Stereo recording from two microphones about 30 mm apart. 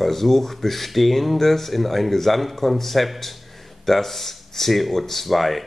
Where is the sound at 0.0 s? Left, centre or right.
Centre.